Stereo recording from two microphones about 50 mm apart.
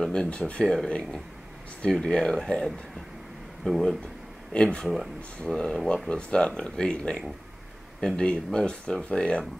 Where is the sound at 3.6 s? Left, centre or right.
Centre.